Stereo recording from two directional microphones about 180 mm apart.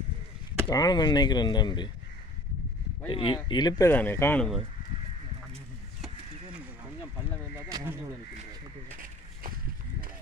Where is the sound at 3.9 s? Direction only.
10° left (ahead or behind).